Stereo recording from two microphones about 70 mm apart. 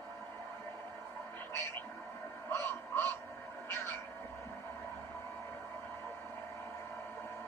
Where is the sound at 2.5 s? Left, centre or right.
Left.